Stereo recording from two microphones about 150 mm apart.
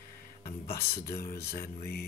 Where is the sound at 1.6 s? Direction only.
90° left.